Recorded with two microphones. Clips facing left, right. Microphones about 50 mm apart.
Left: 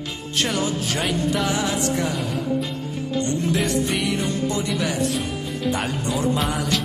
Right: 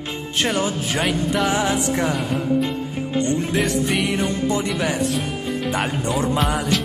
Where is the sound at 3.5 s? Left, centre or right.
Centre.